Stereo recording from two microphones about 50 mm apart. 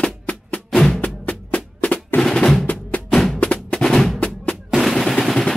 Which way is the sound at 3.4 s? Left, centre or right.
Left.